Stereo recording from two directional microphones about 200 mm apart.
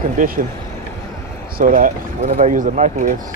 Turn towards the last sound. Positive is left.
turn(degrees=-40)  # may be behind; listen again after turning